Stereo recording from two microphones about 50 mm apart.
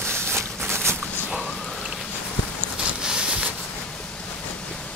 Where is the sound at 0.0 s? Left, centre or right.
Right.